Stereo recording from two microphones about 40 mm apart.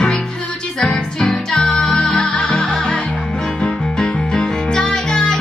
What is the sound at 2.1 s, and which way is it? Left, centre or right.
Music, left.